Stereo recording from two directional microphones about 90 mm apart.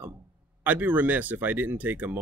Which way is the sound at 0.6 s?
20° right (ahead or behind).